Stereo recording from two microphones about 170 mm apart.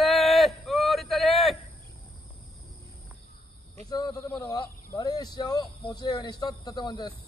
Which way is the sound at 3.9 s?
25° left (ahead or behind).